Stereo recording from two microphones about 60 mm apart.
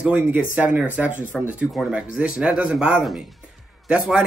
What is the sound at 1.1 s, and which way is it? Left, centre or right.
Speech, left.